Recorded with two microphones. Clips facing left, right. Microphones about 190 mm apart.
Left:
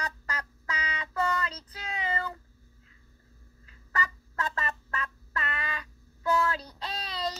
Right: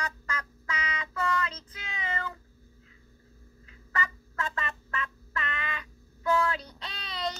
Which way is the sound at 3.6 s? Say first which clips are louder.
Even; 40° left (ahead or behind).